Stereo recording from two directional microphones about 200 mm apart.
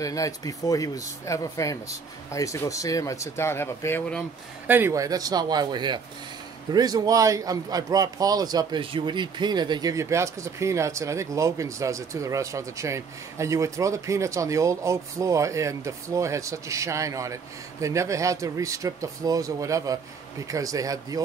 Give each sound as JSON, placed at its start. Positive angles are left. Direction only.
{"t": 0.0, "sound": "speech", "side_deg": 15}
{"t": 4.6, "sound": "a man's voice", "side_deg": -10}